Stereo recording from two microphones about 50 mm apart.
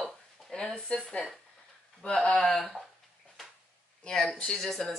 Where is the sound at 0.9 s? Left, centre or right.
Left.